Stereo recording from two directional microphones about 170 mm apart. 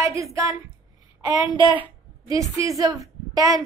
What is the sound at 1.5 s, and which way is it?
A woman's voice, 30° right (ahead or behind).